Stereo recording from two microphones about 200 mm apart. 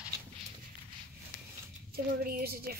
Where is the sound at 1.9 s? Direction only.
50° right (ahead or behind).